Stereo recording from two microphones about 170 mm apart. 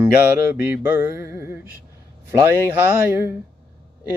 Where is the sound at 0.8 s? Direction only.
15° right (ahead or behind).